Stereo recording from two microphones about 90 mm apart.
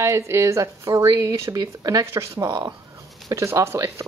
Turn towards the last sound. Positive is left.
turn(degrees=-35)  # may be behind; listen again after turning